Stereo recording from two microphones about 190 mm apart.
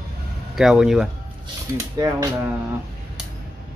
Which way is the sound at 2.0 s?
20° right (ahead or behind).